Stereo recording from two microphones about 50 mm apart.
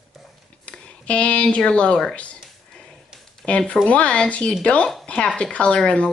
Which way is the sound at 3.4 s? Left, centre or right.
Left.